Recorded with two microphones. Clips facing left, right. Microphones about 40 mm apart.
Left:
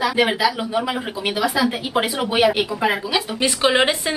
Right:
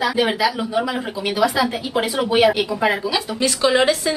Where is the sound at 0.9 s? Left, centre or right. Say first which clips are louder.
Even; left.